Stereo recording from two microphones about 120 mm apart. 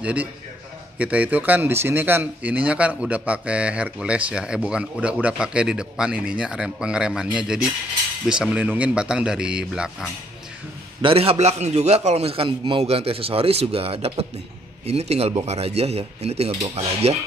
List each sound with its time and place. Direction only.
0.0 s speech: 10° right (ahead or behind)
11.0 s a man's voice: 50° right (ahead or behind)